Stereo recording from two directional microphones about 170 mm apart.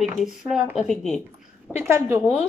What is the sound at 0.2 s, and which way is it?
Speech, 5° right (ahead or behind).